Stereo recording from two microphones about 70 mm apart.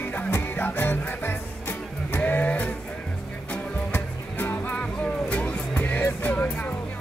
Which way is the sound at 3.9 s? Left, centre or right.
Left.